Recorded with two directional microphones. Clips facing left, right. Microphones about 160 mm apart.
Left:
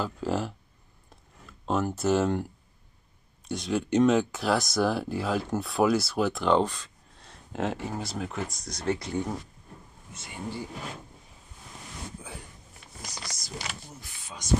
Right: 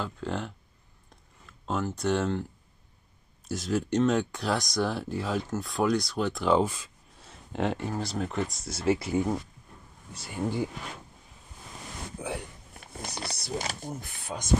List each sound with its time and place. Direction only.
0.0 s speech: 5° left (ahead or behind)
1.7 s speech: 5° left (ahead or behind)
3.4 s speech: centre (ahead or behind)
10.1 s speech: 40° right (ahead or behind)
12.2 s speech: 75° right (ahead or behind)
13.6 s speech: 50° right (ahead or behind)